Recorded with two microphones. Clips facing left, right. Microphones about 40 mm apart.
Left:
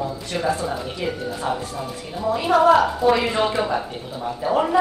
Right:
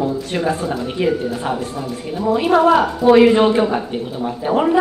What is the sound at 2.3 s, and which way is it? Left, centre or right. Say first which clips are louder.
A woman's voice: right 2 dB; centre.